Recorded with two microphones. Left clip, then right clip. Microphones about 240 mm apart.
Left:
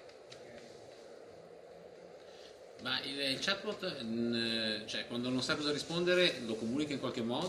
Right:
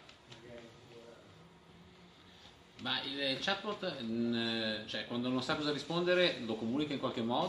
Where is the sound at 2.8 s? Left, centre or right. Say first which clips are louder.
Even; centre.